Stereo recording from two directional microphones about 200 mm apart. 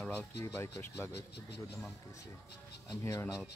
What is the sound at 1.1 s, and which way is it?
Speech, 55° left (ahead or behind).